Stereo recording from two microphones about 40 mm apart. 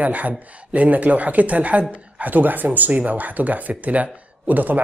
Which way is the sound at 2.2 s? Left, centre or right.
Right.